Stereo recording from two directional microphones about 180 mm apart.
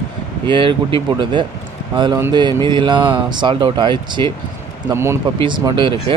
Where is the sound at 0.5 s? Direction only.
30° right (ahead or behind).